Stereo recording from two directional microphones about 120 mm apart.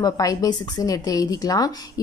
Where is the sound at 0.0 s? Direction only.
30° left (ahead or behind).